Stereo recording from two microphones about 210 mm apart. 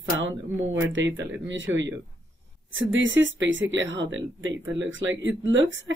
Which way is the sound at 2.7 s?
65° right (ahead or behind).